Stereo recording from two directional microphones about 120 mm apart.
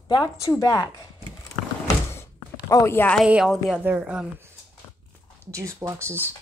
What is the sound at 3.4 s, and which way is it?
Speech, centre (ahead or behind).